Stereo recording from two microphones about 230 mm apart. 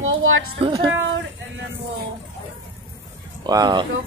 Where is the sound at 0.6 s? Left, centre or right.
Right.